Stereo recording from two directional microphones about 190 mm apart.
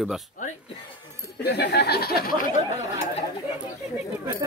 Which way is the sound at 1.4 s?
60° left (ahead or behind).